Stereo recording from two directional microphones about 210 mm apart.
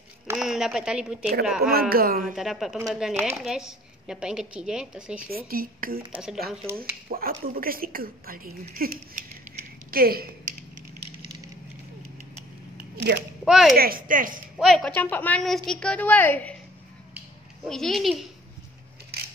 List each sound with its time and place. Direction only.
0.4 s a woman's voice: centre (ahead or behind)
1.6 s speech: 45° right (ahead or behind)
2.3 s speech: centre (ahead or behind)
5.3 s speech: 45° right (ahead or behind)
6.1 s speech: centre (ahead or behind)
6.8 s speech: 45° right (ahead or behind)
13.5 s speech: centre (ahead or behind)
13.7 s speech: 45° right (ahead or behind)
14.6 s speech: centre (ahead or behind)
17.6 s speech: centre (ahead or behind)